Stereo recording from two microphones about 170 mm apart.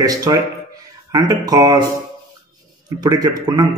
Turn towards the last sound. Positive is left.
turn(degrees=-25)  # may be behind; listen again after turning